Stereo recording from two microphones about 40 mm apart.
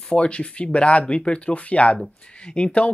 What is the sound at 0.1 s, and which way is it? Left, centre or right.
Speech, left.